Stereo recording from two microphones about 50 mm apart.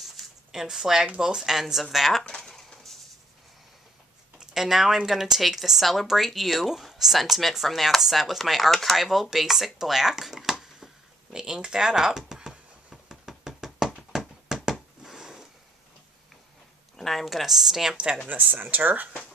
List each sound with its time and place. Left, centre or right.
0.0 s a sound: centre
1.2 s speech: centre
2.2 s a sound: centre
4.4 s speech: centre
12.2 s knock: centre
16.9 s speech: centre
17.9 s speech: centre
18.3 s speech: right